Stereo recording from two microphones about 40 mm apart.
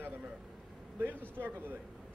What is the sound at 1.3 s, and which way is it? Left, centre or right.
Speech, right.